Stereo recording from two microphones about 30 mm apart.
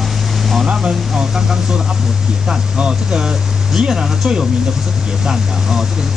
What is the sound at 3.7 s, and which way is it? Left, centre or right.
Speech, centre.